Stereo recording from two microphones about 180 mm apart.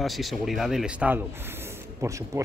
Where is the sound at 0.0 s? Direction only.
Centre (ahead or behind).